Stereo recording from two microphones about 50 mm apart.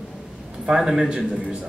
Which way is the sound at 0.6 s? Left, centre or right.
Centre.